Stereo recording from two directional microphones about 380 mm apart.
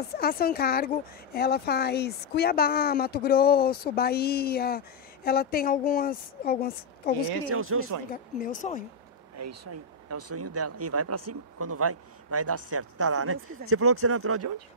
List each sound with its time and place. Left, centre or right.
0.1 s speech: left
7.4 s speech: right
8.1 s speech: left
9.4 s speech: right